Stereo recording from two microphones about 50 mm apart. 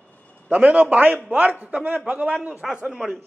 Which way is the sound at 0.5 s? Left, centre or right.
Right.